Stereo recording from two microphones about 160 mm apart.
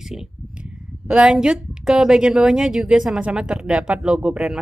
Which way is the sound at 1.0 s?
5° right (ahead or behind).